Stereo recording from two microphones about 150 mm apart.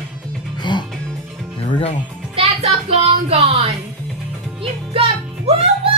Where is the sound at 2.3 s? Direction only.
40° right (ahead or behind).